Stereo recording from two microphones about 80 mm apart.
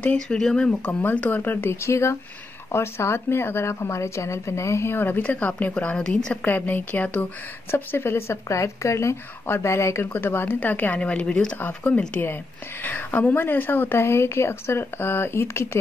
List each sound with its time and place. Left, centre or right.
0.0 s speech: centre
1.0 s a woman's voice: left
6.4 s a woman's voice: left
7.7 s a woman's voice: left
10.0 s a woman's voice: left
11.9 s a woman's voice: centre; by 15.8 s left